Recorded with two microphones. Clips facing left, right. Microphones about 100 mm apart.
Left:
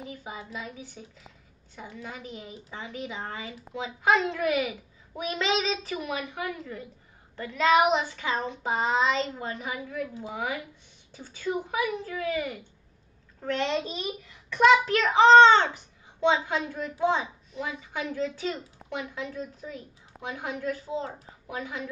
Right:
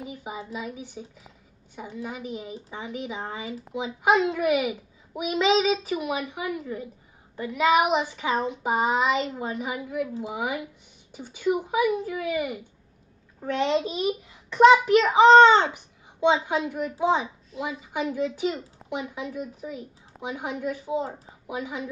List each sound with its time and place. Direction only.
0.0 s a child's voice: 15° right (ahead or behind)